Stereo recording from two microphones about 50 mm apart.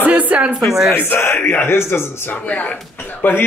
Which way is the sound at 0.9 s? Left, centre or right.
Left.